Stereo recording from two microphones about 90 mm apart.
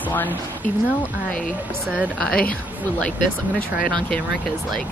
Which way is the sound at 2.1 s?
5° left (ahead or behind).